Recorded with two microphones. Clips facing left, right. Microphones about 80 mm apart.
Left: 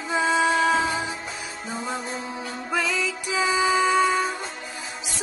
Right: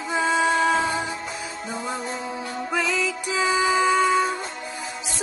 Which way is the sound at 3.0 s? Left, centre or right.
Centre.